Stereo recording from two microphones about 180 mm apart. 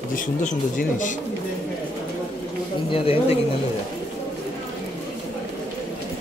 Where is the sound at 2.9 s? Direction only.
30° left (ahead or behind).